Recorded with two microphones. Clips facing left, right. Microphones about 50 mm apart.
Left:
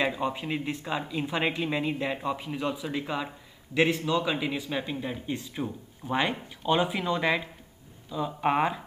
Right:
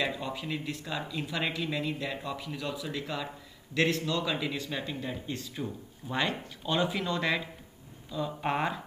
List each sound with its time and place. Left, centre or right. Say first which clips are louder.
0.0 s a man's voice: left 4 dB; left